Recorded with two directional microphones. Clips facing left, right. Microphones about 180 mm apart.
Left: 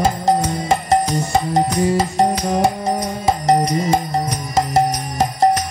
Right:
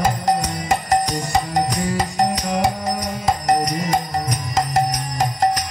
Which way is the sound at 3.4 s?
25° left (ahead or behind).